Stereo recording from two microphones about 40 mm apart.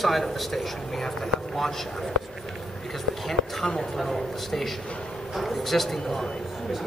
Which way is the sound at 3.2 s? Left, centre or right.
Centre.